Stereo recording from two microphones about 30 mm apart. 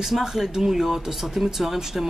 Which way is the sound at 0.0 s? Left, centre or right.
Centre.